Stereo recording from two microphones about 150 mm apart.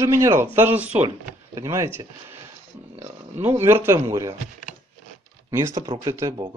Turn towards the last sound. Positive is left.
turn(degrees=-20)  # may be behind; listen again after turning